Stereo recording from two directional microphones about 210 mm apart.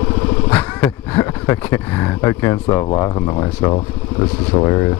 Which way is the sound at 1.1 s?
15° left (ahead or behind).